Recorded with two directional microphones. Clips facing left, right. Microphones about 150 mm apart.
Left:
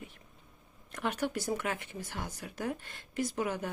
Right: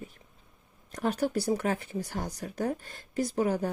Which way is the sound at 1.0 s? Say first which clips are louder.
Right 5 dB; 35° right (ahead or behind).